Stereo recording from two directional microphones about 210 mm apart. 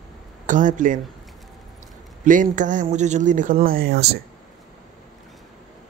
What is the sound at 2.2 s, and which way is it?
Speech, 40° right (ahead or behind).